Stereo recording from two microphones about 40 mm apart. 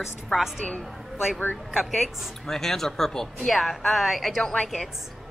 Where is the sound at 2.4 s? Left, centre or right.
Centre.